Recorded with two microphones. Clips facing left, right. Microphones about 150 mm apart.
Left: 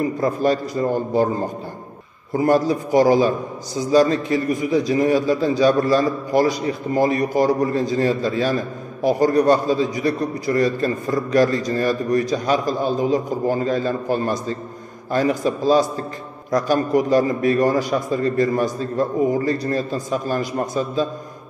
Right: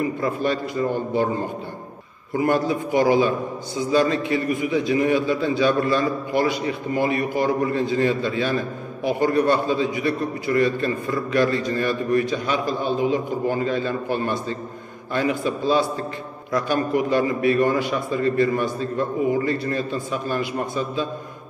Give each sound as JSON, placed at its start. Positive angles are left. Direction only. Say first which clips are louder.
{"t": 0.0, "sound": "a man's voice", "louder": "left 4 dB", "side_deg": 40}